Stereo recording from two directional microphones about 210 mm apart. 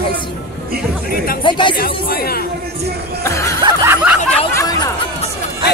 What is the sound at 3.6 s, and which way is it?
Snicker, 15° right (ahead or behind).